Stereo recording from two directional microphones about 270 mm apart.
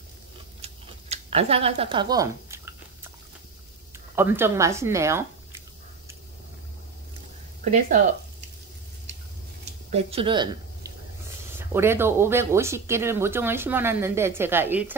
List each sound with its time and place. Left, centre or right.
0.6 s a sound: right
3.9 s speech: centre
9.8 s a woman's voice: right; by 15.0 s centre